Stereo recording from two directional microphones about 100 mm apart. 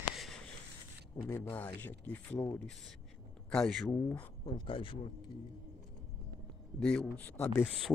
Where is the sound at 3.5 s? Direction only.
5° left (ahead or behind).